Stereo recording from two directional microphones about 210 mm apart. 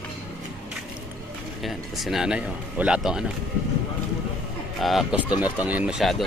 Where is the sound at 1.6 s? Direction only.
Centre (ahead or behind).